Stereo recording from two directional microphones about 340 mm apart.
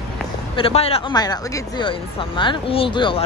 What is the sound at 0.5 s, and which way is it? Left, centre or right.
Speech, centre.